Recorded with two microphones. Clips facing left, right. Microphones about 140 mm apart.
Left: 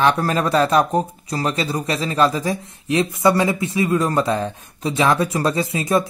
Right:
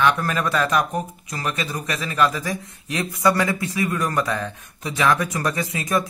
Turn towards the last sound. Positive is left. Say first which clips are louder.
# left 4 dB
turn(degrees=25)  # may be behind; listen again after turning